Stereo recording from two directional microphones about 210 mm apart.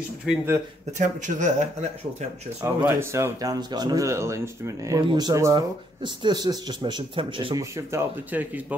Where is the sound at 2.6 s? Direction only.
10° right (ahead or behind).